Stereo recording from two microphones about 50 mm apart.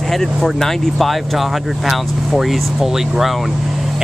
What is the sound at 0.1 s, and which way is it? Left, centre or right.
Speech, centre.